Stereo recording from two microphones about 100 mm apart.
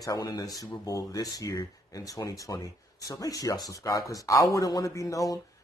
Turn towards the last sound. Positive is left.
turn(degrees=35)  # may be behind; listen again after turning